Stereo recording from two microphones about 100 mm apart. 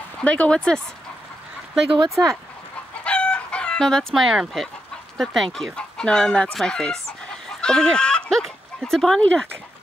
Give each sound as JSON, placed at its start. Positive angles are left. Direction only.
{"t": 0.2, "sound": "speech", "side_deg": 10}
{"t": 2.0, "sound": "speech", "side_deg": -30}
{"t": 3.0, "sound": "chicken", "side_deg": 10}
{"t": 5.1, "sound": "speech", "side_deg": 0}